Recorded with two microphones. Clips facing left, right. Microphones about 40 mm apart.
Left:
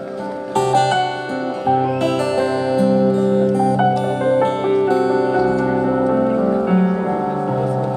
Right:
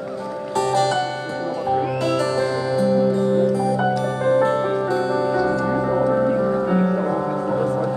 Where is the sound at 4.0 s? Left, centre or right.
Left.